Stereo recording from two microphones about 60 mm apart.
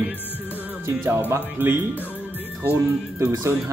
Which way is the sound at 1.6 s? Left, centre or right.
Right.